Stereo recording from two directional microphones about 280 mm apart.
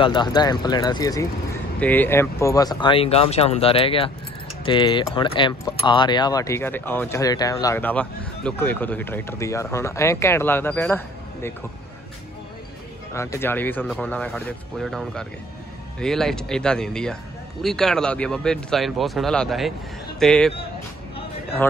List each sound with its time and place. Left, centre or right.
0.0 s speech: centre
13.1 s speech: centre